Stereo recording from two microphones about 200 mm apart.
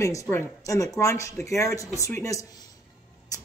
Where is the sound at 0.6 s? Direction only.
15° left (ahead or behind).